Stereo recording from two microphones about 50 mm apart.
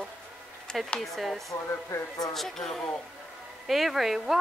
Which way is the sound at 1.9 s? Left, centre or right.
Left.